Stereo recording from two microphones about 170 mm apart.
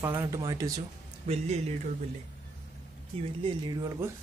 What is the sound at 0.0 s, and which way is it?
Speech, 15° right (ahead or behind).